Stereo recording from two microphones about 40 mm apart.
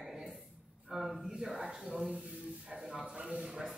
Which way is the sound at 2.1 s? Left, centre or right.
Right.